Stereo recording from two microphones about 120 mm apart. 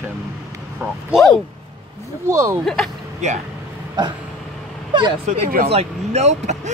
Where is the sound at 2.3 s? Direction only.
25° right (ahead or behind).